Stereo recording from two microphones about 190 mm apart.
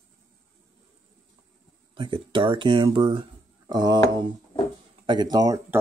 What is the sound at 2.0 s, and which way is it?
Speech, 25° right (ahead or behind).